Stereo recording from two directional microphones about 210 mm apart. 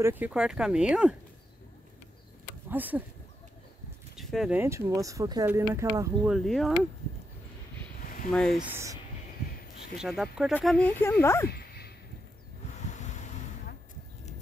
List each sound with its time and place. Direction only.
0.0 s speech: 10° right (ahead or behind)
2.7 s speech: 10° right (ahead or behind)
4.2 s speech: centre (ahead or behind)
6.2 s speech: centre (ahead or behind)
8.3 s speech: centre (ahead or behind)
9.9 s speech: centre (ahead or behind)
12.9 s vehicle: 35° left (ahead or behind)